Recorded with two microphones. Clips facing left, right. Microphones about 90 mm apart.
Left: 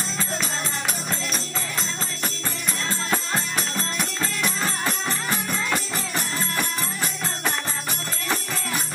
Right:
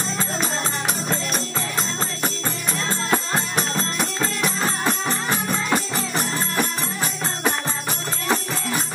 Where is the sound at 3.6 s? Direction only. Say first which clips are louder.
Right 4 dB; 30° right (ahead or behind).